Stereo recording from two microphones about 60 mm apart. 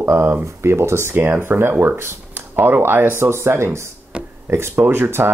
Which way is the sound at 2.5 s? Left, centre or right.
Right.